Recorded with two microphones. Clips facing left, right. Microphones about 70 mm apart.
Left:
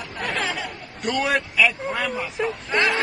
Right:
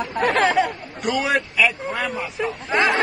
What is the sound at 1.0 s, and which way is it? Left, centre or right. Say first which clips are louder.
Speech: right 1 dB; centre.